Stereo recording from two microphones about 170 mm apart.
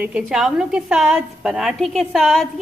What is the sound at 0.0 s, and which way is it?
A woman's voice, 5° right (ahead or behind).